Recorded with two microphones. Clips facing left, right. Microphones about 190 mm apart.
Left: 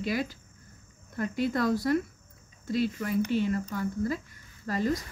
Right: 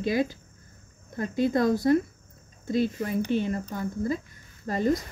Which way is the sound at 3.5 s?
25° right (ahead or behind).